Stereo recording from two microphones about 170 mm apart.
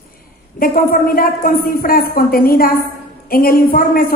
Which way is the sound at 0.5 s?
60° left (ahead or behind).